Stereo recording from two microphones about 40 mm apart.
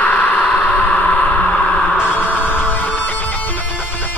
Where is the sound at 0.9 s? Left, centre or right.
Left.